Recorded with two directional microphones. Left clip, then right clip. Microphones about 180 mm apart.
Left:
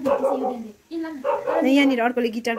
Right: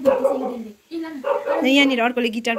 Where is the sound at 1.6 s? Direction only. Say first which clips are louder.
Right 3 dB; 15° left (ahead or behind).